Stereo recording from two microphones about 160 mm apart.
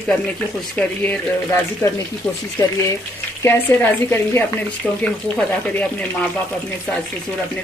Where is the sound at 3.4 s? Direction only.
15° left (ahead or behind).